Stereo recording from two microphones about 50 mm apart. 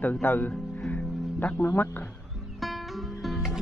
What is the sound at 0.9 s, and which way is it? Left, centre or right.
Music, left.